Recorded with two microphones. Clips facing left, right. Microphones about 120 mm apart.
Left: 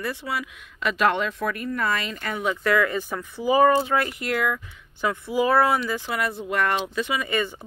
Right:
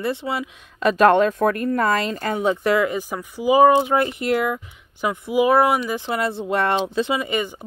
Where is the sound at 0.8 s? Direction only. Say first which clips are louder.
Right 8 dB; 40° right (ahead or behind).